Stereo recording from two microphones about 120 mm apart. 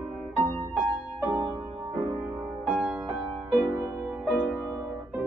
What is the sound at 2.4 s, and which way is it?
Music, 5° right (ahead or behind).